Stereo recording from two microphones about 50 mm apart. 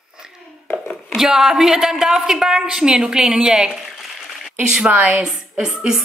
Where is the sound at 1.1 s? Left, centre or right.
Centre.